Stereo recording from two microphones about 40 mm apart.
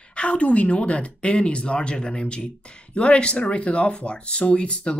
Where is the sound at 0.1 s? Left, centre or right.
Left.